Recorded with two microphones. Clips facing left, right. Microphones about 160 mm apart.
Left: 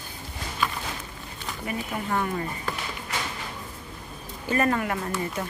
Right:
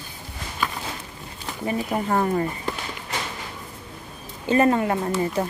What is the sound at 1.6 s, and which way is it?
Speech, 35° right (ahead or behind).